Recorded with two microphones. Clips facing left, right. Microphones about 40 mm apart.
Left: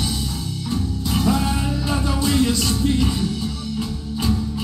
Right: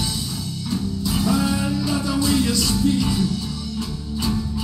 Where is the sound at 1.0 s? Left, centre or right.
Centre.